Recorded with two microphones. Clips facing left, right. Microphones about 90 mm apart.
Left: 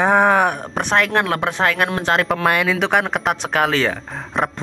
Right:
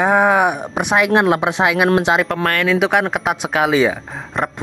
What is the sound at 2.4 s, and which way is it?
Speech, 10° left (ahead or behind).